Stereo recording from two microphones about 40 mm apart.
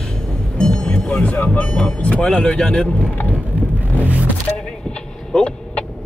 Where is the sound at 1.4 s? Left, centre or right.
Left.